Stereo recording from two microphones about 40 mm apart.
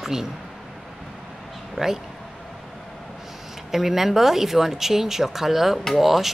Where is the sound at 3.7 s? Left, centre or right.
Centre.